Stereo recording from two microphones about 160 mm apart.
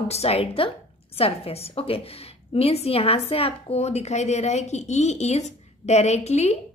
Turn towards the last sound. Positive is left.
turn(degrees=45)  # may be behind; listen again after turning